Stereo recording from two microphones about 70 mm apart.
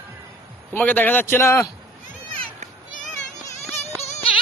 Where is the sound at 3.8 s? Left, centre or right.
Left.